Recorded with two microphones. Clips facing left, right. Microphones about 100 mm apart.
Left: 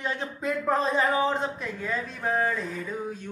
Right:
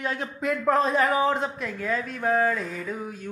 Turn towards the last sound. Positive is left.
turn(degrees=0)  # may be behind; listen again after turning